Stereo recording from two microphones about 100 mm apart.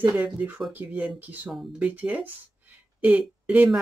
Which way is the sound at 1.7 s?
15° right (ahead or behind).